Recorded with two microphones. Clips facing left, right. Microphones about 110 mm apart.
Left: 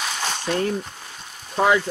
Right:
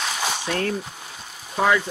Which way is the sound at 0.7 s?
5° right (ahead or behind).